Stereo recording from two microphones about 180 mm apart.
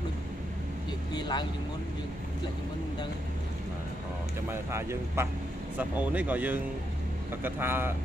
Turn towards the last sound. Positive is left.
turn(degrees=-10)  # may be behind; listen again after turning